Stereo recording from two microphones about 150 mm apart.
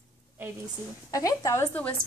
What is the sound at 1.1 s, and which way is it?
Speech, 25° left (ahead or behind).